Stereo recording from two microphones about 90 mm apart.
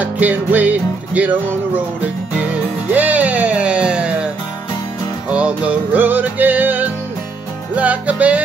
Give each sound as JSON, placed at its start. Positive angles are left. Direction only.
{"t": 0.0, "sound": "music", "side_deg": -20}
{"t": 5.3, "sound": "music", "side_deg": -15}